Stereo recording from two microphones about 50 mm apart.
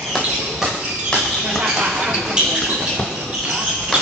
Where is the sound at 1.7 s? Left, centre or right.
Centre.